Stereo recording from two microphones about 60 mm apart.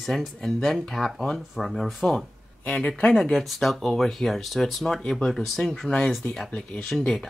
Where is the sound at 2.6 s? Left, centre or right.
Centre.